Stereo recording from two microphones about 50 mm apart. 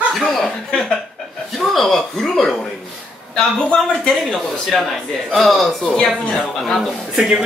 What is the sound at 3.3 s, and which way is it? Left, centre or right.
Speech, centre.